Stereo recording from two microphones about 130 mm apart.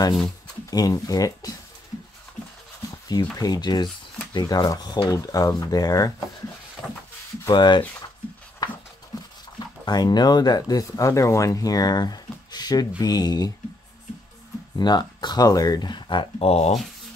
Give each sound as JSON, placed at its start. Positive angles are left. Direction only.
{"t": 0.7, "sound": "speech", "side_deg": 30}
{"t": 3.1, "sound": "speech", "side_deg": 30}
{"t": 7.4, "sound": "speech", "side_deg": 35}
{"t": 9.1, "sound": "a sound", "side_deg": 30}
{"t": 9.8, "sound": "speech", "side_deg": 30}
{"t": 14.8, "sound": "speech", "side_deg": 35}